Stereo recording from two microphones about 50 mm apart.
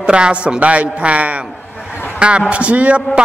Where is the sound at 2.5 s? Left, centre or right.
Right.